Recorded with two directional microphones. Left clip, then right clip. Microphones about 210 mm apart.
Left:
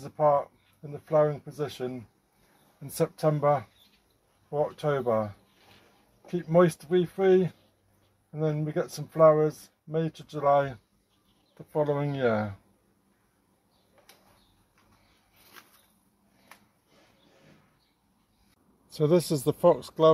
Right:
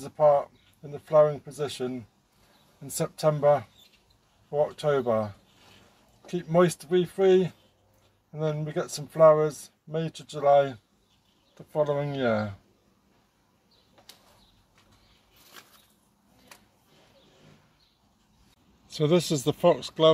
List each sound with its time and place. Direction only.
0.0 s speech: 15° left (ahead or behind)
6.3 s speech: 15° left (ahead or behind)
18.9 s speech: 5° left (ahead or behind)